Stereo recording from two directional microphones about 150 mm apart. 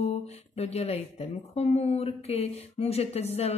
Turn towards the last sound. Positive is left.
turn(degrees=45)  # may be behind; listen again after turning